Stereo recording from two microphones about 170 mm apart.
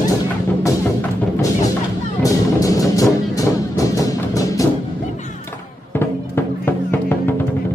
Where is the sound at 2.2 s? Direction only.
20° left (ahead or behind).